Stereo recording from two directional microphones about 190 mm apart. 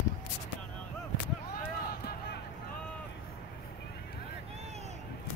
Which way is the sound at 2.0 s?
55° left (ahead or behind).